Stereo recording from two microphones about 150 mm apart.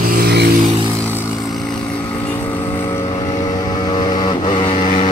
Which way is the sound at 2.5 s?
15° left (ahead or behind).